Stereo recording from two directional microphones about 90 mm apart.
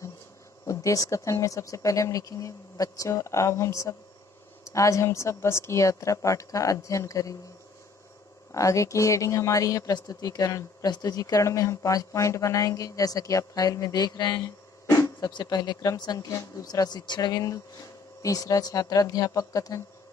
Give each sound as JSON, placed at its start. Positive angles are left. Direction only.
{"t": 0.7, "sound": "speech", "side_deg": 35}
{"t": 8.5, "sound": "speech", "side_deg": 35}
{"t": 14.9, "sound": "a sound", "side_deg": 40}
{"t": 15.5, "sound": "a woman's voice", "side_deg": 50}